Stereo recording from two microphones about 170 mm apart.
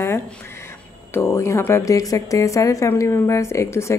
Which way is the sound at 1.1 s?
15° left (ahead or behind).